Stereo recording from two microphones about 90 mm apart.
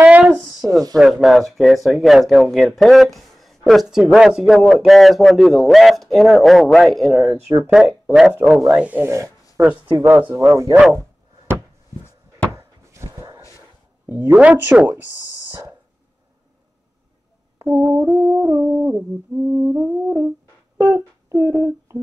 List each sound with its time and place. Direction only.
0.0 s a sound: 15° right (ahead or behind)
0.6 s music: 20° right (ahead or behind)
0.9 s speech: 5° right (ahead or behind)
9.0 s speech: 35° right (ahead or behind)
9.6 s music: 15° right (ahead or behind)
10.3 s speech: 35° right (ahead or behind)
12.5 s a sound: 30° right (ahead or behind)
14.0 s music: 25° right (ahead or behind)
17.9 s music: 25° right (ahead or behind)
20.8 s humming: 30° right (ahead or behind)